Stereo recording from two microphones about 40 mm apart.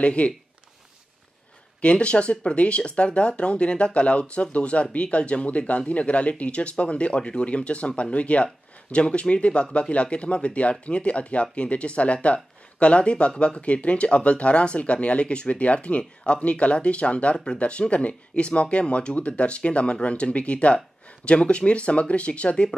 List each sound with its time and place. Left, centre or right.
0.0 s speech: left
1.8 s speech: left